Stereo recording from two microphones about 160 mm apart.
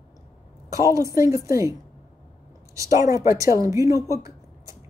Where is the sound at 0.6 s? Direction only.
20° right (ahead or behind).